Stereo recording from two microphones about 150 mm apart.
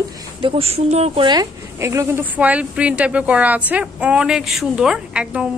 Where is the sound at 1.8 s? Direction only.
20° right (ahead or behind).